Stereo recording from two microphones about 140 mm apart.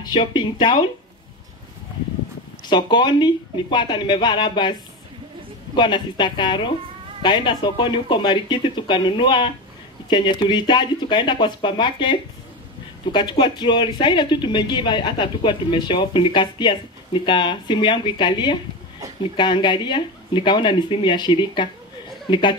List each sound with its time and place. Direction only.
0.1 s speech: 35° left (ahead or behind)
2.6 s speech: 35° left (ahead or behind)
5.8 s speech: 35° left (ahead or behind)